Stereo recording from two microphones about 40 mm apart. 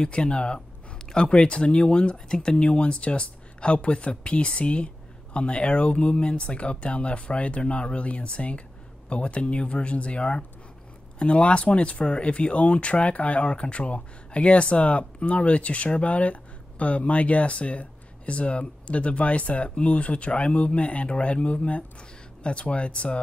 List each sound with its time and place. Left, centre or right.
0.0 s speech: left